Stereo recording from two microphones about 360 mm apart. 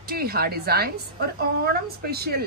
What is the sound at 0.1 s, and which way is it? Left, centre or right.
A woman's voice, right.